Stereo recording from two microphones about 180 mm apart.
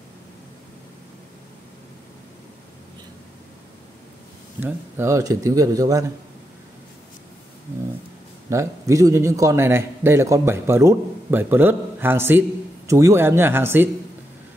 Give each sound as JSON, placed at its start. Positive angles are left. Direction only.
{"t": 4.6, "sound": "speech", "side_deg": -10}
{"t": 8.5, "sound": "a man's voice", "side_deg": -15}